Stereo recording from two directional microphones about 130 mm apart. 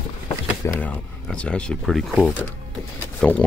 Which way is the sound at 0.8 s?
10° left (ahead or behind).